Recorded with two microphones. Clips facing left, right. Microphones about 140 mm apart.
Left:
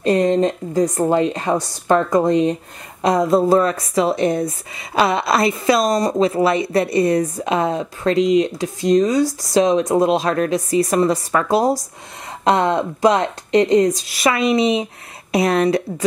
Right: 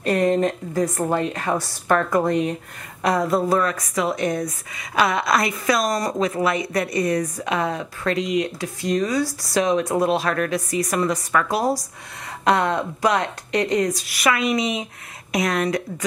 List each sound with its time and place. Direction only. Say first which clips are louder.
0.0 s a woman's voice: left 3 dB; 25° left (ahead or behind)